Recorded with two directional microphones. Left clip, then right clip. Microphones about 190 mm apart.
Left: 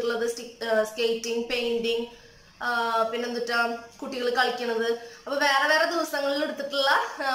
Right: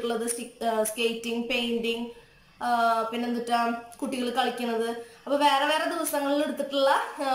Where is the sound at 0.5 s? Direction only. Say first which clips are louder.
Left 1 dB; 15° right (ahead or behind).